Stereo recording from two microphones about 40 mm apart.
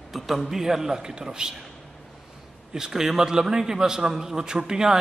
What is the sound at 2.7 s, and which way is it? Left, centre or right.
A man's voice, centre.